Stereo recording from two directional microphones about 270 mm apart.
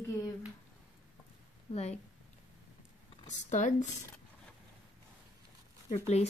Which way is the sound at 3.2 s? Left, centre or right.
Left.